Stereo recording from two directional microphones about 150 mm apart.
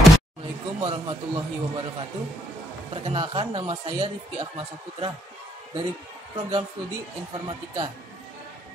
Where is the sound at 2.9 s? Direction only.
35° right (ahead or behind).